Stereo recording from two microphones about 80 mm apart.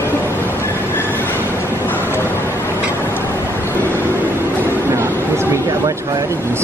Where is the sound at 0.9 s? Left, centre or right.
Left.